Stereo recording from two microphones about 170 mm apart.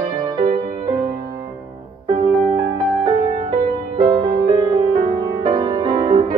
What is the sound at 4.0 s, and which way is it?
Music, 25° right (ahead or behind).